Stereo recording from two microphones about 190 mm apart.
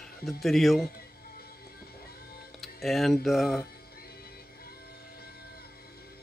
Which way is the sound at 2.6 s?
Centre (ahead or behind).